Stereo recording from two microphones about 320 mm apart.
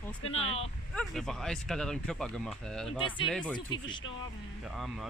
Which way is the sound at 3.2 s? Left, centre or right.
Centre.